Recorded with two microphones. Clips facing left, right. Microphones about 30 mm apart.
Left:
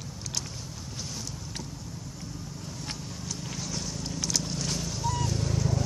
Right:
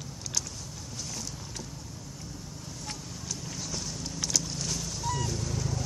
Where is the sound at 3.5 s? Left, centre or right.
Centre.